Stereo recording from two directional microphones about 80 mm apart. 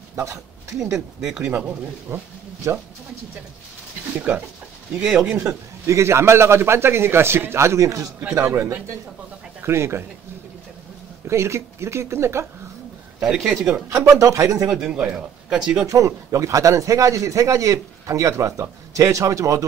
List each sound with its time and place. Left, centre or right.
0.1 s a sound: right
0.9 s speech: centre
1.6 s speech: centre
4.1 s speech: centre
5.9 s speech: right
11.2 s speech: right
13.2 s speech: centre
13.8 s speech: right
14.7 s speech: centre
15.8 s speech: right